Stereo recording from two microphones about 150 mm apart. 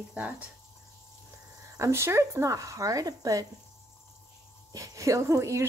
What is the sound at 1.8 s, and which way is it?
Speech, 20° right (ahead or behind).